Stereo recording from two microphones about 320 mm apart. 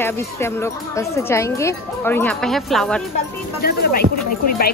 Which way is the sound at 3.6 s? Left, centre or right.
Left.